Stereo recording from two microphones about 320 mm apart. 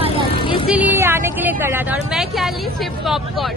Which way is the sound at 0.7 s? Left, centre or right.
Centre.